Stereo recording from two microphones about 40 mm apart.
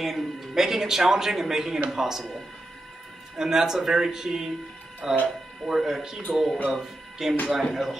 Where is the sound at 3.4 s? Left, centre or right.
Centre.